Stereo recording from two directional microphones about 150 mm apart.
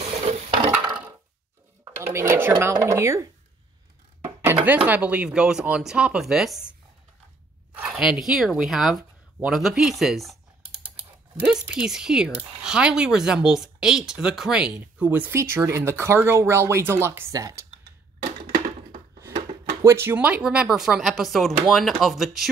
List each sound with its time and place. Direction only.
0.0 s stir: 45° right (ahead or behind)
2.1 s speech: 15° right (ahead or behind)
4.2 s chopping: 20° right (ahead or behind)
4.6 s speech: 10° right (ahead or behind)
7.7 s zipper: 5° right (ahead or behind)
11.6 s speech: 5° right (ahead or behind); by 17.6 s 25° right (ahead or behind)
19.8 s speech: 15° right (ahead or behind); by 22.5 s centre (ahead or behind)